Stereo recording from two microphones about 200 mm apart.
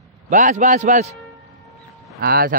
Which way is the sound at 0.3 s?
40° right (ahead or behind).